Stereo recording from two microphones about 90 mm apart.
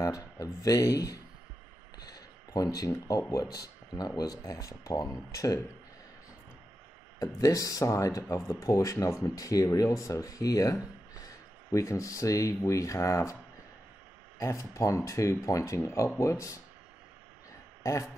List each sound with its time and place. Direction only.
0.0 s speech: 40° left (ahead or behind)
7.2 s speech: 40° left (ahead or behind)
14.4 s speech: 35° left (ahead or behind)
17.8 s speech: 35° left (ahead or behind)